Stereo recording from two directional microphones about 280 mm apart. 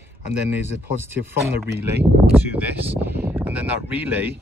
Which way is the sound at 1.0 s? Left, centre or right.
Centre.